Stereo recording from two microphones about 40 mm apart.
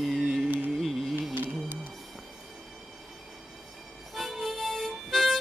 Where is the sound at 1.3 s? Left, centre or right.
Right.